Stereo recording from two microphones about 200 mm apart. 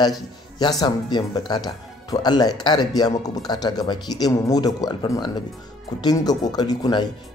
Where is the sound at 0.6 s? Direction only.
20° left (ahead or behind).